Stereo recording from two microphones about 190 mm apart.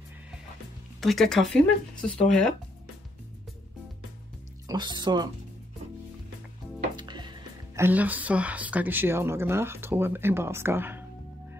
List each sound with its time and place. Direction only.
1.0 s speech: centre (ahead or behind)
4.6 s speech: 25° right (ahead or behind)
7.0 s music: 25° right (ahead or behind)
7.8 s speech: 10° right (ahead or behind)